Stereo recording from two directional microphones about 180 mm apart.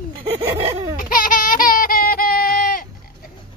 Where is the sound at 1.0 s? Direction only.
50° left (ahead or behind).